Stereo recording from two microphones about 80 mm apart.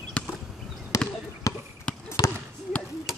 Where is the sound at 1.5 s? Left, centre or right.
Left.